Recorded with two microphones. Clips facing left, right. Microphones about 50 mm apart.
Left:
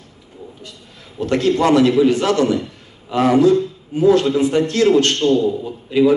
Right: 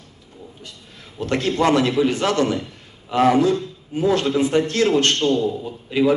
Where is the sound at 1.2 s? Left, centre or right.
Right.